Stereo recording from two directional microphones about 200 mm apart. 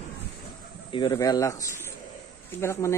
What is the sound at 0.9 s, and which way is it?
Speech, 20° left (ahead or behind).